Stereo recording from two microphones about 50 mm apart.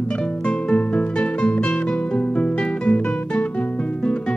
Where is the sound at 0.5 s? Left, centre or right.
Centre.